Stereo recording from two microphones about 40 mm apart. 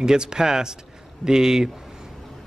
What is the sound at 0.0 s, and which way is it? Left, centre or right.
Speech, centre.